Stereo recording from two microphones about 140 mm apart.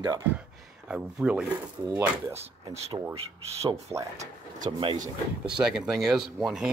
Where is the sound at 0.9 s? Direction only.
10° right (ahead or behind).